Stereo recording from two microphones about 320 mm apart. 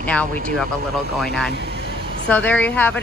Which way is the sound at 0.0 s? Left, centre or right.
Centre.